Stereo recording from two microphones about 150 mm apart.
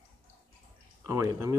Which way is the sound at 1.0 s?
20° right (ahead or behind).